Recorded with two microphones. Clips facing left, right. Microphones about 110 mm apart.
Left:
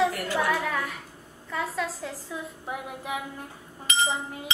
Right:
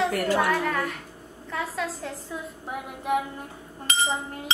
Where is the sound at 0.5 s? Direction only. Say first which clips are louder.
Right 2 dB; 5° left (ahead or behind).